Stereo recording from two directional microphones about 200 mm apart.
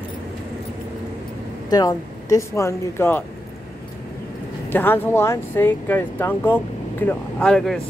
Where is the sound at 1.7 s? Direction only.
20° left (ahead or behind).